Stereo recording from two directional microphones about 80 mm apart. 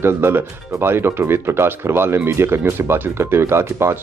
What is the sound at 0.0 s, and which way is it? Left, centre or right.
Speech, right.